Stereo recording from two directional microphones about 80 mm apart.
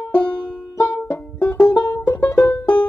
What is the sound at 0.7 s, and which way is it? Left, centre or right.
Music, left.